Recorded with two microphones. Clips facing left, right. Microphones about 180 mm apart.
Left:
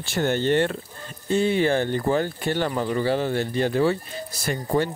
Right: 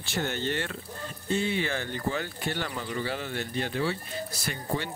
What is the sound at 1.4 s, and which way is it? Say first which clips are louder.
Speech: left 11 dB; 45° left (ahead or behind).